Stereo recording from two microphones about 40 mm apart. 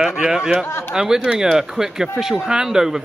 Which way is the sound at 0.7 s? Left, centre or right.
Left.